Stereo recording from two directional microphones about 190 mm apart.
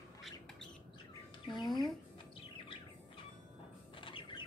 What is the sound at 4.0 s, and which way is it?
Bird, 25° left (ahead or behind).